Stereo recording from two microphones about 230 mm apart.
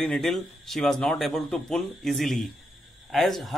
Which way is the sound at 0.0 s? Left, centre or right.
Centre.